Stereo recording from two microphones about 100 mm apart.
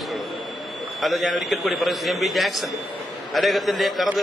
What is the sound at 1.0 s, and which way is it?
A man's voice, centre (ahead or behind).